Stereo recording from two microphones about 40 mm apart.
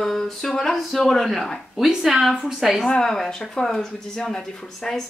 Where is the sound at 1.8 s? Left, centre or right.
Centre.